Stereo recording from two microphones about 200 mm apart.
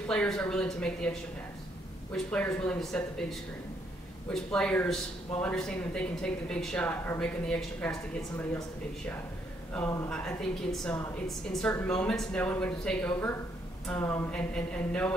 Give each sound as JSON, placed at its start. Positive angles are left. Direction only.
{"t": 0.1, "sound": "a man's voice", "side_deg": 5}
{"t": 2.1, "sound": "a man's voice", "side_deg": 10}